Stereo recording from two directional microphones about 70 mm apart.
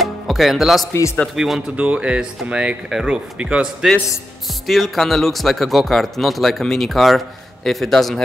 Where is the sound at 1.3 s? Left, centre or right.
Centre.